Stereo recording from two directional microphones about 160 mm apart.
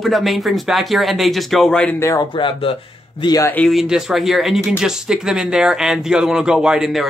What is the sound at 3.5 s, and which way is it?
Speech, 5° left (ahead or behind).